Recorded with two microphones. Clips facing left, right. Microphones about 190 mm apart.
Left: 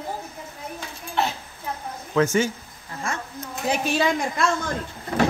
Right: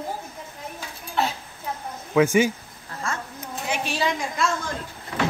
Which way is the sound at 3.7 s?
50° left (ahead or behind).